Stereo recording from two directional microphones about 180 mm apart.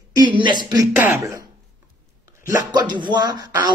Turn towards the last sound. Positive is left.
turn(degrees=-25)  # may be behind; listen again after turning